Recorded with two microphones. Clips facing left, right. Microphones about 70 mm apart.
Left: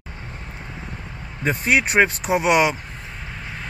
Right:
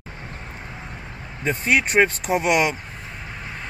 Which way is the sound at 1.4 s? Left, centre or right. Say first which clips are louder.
Left 1 dB; centre.